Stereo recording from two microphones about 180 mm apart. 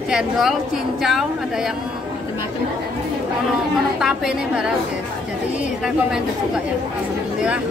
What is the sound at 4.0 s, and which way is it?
Speech, centre (ahead or behind).